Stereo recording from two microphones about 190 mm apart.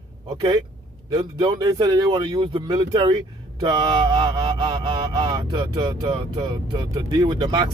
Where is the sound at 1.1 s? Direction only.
25° right (ahead or behind).